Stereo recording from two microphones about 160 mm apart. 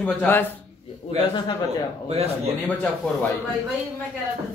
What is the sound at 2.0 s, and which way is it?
Speech, 40° right (ahead or behind).